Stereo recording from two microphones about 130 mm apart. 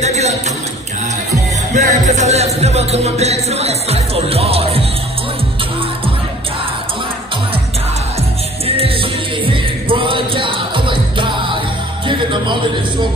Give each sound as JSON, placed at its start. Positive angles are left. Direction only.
{"t": 0.0, "sound": "a sound", "side_deg": -60}
{"t": 1.7, "sound": "music", "side_deg": -65}
{"t": 8.6, "sound": "music", "side_deg": -50}